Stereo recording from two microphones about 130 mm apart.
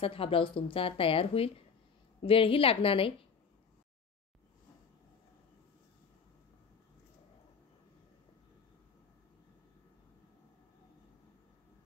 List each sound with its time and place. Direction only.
0.0 s speech: 45° left (ahead or behind)